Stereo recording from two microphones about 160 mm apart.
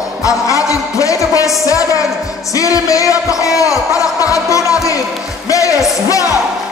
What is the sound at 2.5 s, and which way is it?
Speech, 20° left (ahead or behind).